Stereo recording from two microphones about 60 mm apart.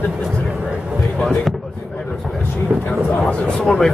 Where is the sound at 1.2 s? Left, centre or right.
Centre.